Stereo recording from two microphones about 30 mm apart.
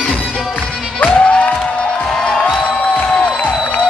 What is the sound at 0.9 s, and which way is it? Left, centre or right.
Music, left.